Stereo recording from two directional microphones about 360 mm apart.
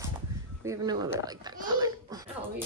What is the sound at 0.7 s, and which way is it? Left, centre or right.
A child's voice, centre.